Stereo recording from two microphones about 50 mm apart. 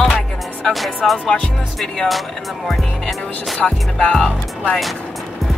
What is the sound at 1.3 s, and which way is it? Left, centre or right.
Speech, left.